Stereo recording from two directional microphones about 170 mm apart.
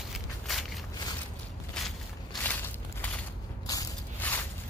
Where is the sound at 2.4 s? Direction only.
10° left (ahead or behind).